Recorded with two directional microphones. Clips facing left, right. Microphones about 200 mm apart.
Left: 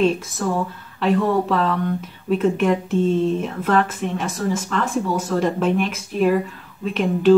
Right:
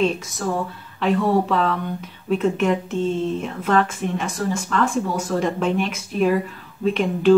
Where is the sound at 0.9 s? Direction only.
5° left (ahead or behind).